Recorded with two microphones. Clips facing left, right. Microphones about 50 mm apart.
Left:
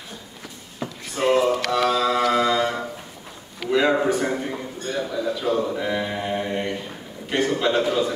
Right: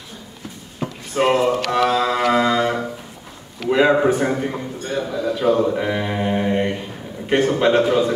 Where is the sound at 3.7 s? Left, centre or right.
Right.